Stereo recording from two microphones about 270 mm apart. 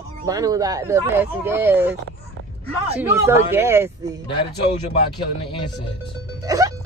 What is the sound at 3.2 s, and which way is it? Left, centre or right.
Speech, centre.